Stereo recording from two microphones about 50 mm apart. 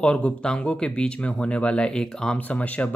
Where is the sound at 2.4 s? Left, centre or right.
Left.